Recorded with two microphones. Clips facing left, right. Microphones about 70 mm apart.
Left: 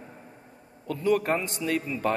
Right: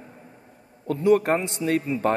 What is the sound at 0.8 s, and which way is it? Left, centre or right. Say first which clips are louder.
A man's voice: right 5 dB; right.